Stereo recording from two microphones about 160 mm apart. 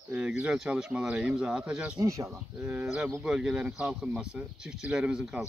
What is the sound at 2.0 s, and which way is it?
Speech, 20° right (ahead or behind).